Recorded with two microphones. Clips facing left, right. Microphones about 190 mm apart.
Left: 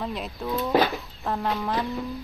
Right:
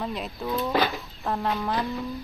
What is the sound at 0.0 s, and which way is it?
Speech, centre (ahead or behind).